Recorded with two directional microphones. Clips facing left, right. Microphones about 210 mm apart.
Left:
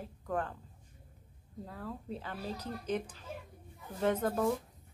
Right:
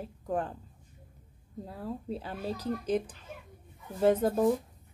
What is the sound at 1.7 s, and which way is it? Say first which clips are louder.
Speech: right 5 dB; 30° right (ahead or behind).